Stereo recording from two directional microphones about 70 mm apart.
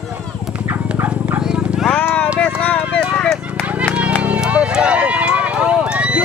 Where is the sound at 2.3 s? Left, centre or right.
Centre.